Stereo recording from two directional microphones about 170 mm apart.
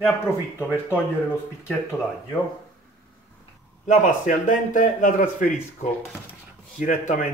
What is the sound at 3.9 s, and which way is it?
Speech, 50° left (ahead or behind).